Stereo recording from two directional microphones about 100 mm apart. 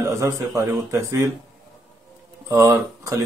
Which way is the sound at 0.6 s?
30° right (ahead or behind).